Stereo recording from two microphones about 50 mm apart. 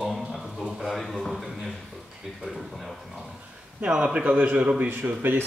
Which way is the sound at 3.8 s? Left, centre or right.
Right.